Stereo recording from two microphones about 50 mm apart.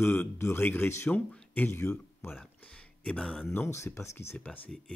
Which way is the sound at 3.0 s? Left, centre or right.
Left.